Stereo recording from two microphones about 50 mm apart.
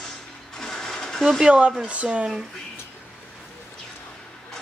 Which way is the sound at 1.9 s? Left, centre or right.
Right.